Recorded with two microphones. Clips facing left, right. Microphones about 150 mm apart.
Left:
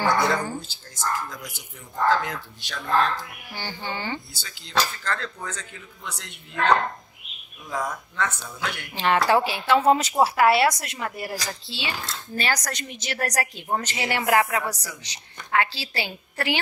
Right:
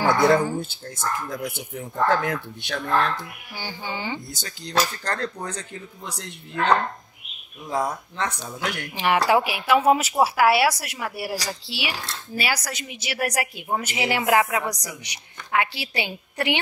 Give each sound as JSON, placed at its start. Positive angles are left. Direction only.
{"t": 0.6, "sound": "speech", "side_deg": -55}
{"t": 3.5, "sound": "speech", "side_deg": -10}
{"t": 4.3, "sound": "speech", "side_deg": -45}
{"t": 7.7, "sound": "speech", "side_deg": -30}
{"t": 8.9, "sound": "speech", "side_deg": -15}